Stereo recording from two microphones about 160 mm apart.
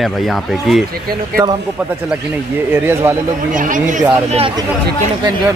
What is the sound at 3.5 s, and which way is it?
Speech, 55° right (ahead or behind).